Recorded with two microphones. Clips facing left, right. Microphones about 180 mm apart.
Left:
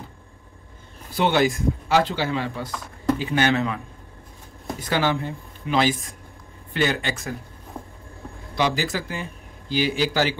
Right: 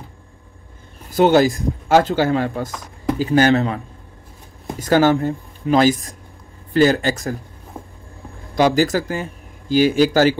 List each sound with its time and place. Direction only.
1.1 s speech: 40° right (ahead or behind)
8.5 s speech: 45° right (ahead or behind)